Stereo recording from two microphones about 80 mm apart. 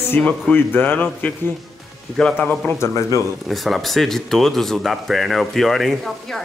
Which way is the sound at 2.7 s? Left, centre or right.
Left.